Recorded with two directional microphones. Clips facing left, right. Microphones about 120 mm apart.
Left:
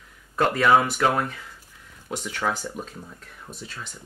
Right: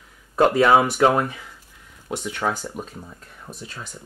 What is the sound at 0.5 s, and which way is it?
Speech, 20° right (ahead or behind).